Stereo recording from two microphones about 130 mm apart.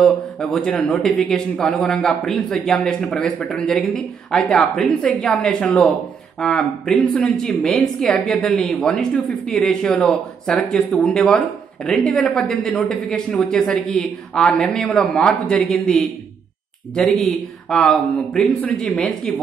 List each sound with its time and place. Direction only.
0.0 s speech: 5° left (ahead or behind)